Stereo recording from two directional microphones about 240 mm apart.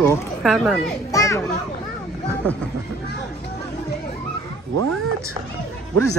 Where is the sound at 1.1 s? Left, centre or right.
Centre.